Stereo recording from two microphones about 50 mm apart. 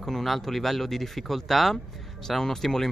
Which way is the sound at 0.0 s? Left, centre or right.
Centre.